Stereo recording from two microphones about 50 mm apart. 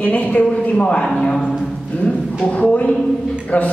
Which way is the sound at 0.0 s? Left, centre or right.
Left.